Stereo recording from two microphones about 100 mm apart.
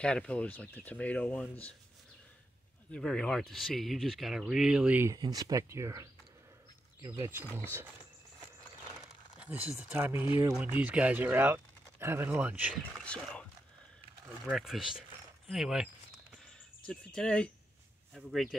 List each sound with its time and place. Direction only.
0.0 s speech: 10° left (ahead or behind)
2.9 s speech: 5° left (ahead or behind); by 5.0 s 10° right (ahead or behind)
5.2 s speech: 40° right (ahead or behind)
9.4 s speech: 15° right (ahead or behind)
13.0 s speech: 10° left (ahead or behind)
14.4 s speech: centre (ahead or behind)
16.8 s speech: 5° left (ahead or behind)